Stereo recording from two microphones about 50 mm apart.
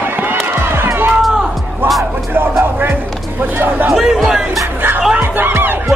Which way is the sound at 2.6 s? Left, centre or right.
Right.